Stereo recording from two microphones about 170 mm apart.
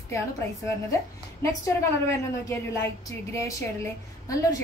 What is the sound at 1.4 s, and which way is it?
A woman's voice, 15° left (ahead or behind).